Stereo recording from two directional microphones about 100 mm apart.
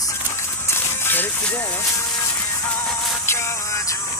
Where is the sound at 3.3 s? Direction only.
25° left (ahead or behind).